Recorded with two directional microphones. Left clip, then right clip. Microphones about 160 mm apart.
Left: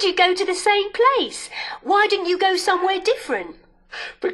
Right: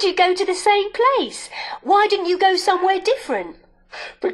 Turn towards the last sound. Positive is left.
turn(degrees=0)  # may be behind; listen again after turning